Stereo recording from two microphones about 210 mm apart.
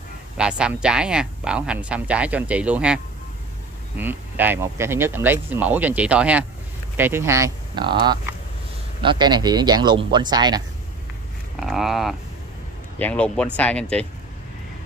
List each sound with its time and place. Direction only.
0.4 s speech: 5° right (ahead or behind)
11.6 s speech: centre (ahead or behind)